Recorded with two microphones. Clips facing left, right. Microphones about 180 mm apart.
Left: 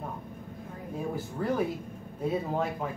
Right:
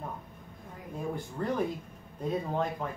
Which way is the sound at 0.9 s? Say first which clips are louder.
Left 1 dB; 5° left (ahead or behind).